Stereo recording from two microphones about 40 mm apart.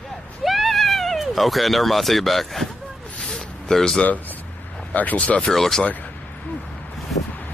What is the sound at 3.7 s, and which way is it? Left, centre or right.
Speech, centre.